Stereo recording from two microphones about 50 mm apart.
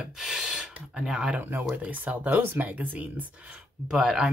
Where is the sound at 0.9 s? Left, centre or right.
Centre.